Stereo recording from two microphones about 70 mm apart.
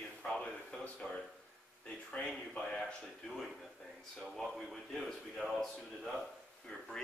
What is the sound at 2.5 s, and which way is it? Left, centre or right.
A man's voice, centre.